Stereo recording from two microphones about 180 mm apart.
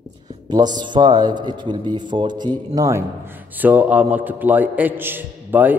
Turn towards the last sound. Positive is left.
turn(degrees=-10)  # may be behind; listen again after turning